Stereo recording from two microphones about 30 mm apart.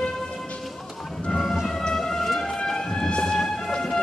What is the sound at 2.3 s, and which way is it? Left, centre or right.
Vehicle, centre.